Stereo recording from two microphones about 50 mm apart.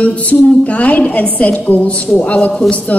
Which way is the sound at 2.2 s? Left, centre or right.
Centre.